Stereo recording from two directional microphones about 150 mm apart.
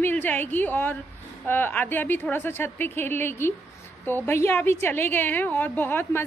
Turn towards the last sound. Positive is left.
turn(degrees=15)  # may be behind; listen again after turning